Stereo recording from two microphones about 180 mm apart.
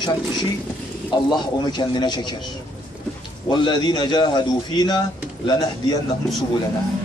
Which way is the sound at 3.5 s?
25° left (ahead or behind).